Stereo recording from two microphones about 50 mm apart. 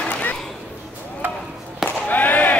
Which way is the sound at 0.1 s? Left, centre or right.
Left.